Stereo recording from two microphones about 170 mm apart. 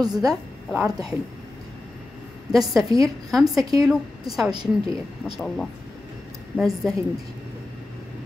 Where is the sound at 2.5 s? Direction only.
Centre (ahead or behind).